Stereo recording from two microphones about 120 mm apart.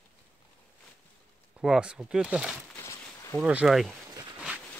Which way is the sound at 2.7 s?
20° left (ahead or behind).